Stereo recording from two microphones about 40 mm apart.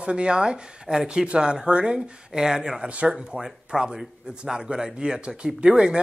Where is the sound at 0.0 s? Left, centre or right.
Right.